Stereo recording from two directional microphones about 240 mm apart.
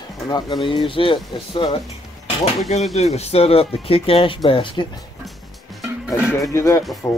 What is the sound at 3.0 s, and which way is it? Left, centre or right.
Speech, left.